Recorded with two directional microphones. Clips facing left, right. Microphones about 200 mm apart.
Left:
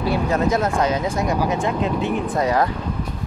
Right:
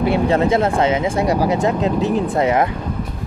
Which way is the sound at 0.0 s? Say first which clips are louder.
Right 4 dB; 25° right (ahead or behind).